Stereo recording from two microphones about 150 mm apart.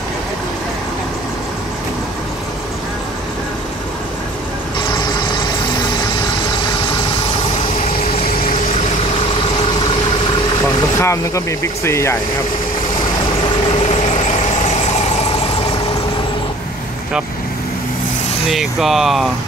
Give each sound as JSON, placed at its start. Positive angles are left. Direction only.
{"t": 10.6, "sound": "speech", "side_deg": 20}
{"t": 13.7, "sound": "vehicle", "side_deg": 50}
{"t": 18.5, "sound": "speech", "side_deg": 0}